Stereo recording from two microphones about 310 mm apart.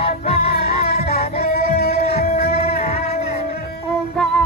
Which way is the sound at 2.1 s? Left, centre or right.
Centre.